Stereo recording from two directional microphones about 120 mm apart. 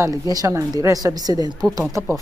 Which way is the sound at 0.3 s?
30° right (ahead or behind).